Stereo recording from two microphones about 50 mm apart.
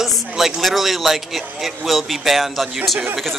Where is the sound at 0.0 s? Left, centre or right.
Centre.